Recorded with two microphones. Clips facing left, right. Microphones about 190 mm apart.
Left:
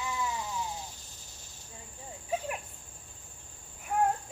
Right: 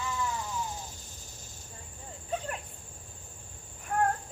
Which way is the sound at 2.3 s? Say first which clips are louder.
Left 1 dB; 10° left (ahead or behind).